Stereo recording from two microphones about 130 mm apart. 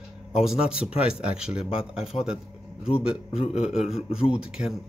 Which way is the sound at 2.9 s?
50° left (ahead or behind).